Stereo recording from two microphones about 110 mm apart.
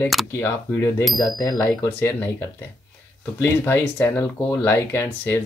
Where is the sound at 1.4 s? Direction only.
30° left (ahead or behind).